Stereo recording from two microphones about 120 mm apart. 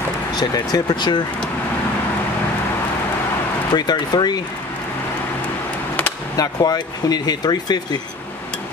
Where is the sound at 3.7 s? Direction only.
35° left (ahead or behind).